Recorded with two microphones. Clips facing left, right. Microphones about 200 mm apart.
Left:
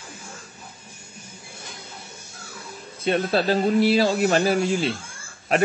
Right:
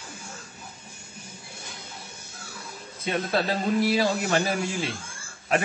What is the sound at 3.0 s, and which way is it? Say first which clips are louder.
A man's voice: left 5 dB; 30° left (ahead or behind).